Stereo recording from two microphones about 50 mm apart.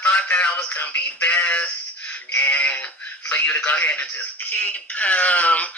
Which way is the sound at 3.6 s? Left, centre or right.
Left.